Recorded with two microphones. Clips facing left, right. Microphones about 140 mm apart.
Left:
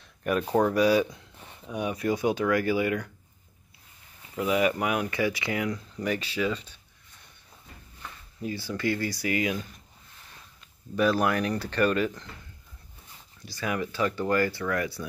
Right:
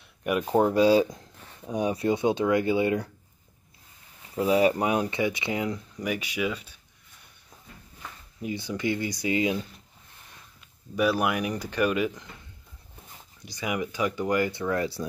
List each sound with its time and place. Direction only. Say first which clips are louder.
0.2 s speech: even; 15° right (ahead or behind)
0.6 s speech: right 3 dB; 25° right (ahead or behind)
1.0 s speech: right 3 dB; 40° right (ahead or behind)
1.7 s speech: right 3 dB; 30° right (ahead or behind)
4.4 s speech: right 3 dB; 30° right (ahead or behind)
5.9 s speech: left 2 dB; 10° right (ahead or behind)
8.4 s speech: right 1 dB; 15° right (ahead or behind)
11.0 s speech: left 1 dB; 10° right (ahead or behind)
13.5 s speech: even; 15° right (ahead or behind)